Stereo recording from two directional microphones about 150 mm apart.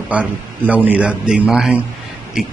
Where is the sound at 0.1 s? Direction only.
10° right (ahead or behind).